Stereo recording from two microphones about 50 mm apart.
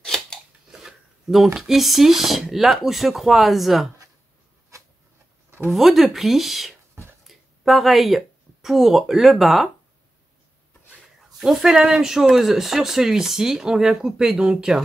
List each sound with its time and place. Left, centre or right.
0.0 s scissors: centre
0.7 s shuffling cards: centre
1.5 s speech: centre
4.7 s a sound: right
5.7 s speech: centre
7.2 s a sound: centre
8.6 s speech: centre
11.3 s speech: centre